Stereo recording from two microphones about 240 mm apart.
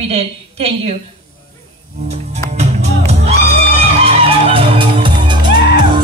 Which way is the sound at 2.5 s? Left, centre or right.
Right.